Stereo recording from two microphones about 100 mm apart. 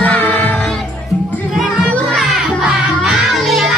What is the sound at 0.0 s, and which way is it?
Music, 15° left (ahead or behind).